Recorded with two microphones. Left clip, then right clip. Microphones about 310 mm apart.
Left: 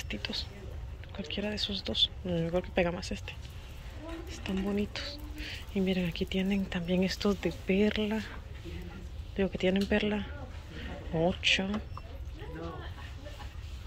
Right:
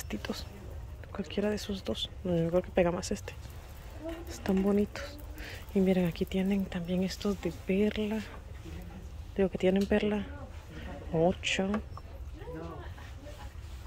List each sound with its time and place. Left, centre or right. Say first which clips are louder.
0.1 s speech: left 2 dB; centre
4.4 s speech: right 5 dB; centre
9.4 s speech: right 2 dB; centre
10.8 s a sound: right 2 dB; centre